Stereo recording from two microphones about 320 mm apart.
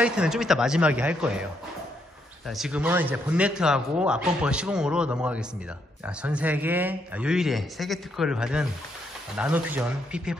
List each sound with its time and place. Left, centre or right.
0.0 s speech: centre
2.4 s speech: centre